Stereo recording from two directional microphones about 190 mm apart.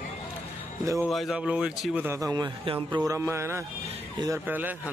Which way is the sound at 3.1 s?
15° right (ahead or behind).